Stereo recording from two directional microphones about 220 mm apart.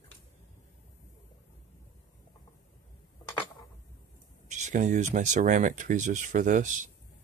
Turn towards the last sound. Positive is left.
turn(degrees=-35)  # may be behind; listen again after turning